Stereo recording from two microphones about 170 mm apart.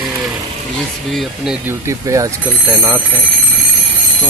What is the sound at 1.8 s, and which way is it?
Speech, 20° right (ahead or behind).